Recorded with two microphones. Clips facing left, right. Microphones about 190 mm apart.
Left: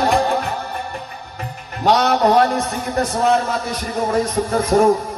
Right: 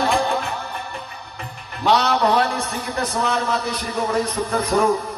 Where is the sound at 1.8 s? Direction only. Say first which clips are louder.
Left 3 dB; 45° left (ahead or behind).